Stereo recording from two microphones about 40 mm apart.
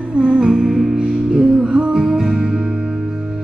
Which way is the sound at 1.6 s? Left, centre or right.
Right.